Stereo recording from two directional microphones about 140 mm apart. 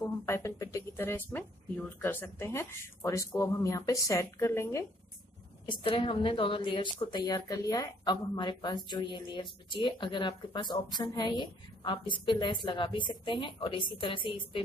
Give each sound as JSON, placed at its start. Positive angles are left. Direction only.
{"t": 0.0, "sound": "speech", "side_deg": 20}
{"t": 5.7, "sound": "a woman's voice", "side_deg": 40}